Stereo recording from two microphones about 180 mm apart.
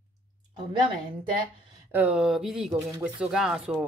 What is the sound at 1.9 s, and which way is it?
A woman's voice, 5° right (ahead or behind).